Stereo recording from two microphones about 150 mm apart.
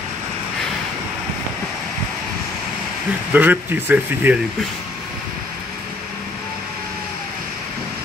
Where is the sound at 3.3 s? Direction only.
10° right (ahead or behind).